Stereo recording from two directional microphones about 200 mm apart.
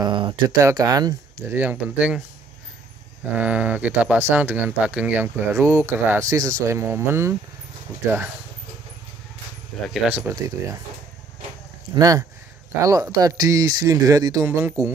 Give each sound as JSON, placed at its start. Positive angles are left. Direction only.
{"t": 0.0, "sound": "speech", "side_deg": -25}
{"t": 3.3, "sound": "speech", "side_deg": -5}
{"t": 9.7, "sound": "speech", "side_deg": 0}
{"t": 11.9, "sound": "speech", "side_deg": -15}